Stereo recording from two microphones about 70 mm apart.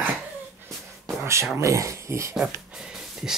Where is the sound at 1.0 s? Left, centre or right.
Right.